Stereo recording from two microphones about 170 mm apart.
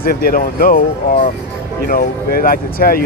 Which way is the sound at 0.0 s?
60° left (ahead or behind).